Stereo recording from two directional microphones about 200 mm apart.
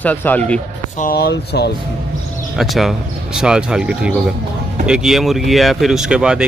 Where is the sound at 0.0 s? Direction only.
10° left (ahead or behind).